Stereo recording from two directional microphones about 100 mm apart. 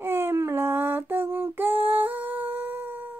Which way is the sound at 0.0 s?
25° right (ahead or behind).